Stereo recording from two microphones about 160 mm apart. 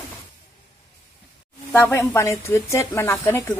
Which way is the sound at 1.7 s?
10° left (ahead or behind).